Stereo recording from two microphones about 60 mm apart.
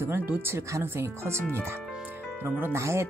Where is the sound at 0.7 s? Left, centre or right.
Right.